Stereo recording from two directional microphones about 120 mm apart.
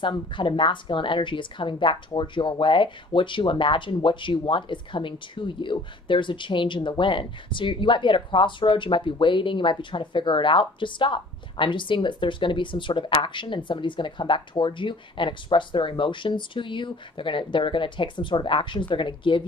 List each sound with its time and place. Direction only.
0.3 s speech: 45° left (ahead or behind)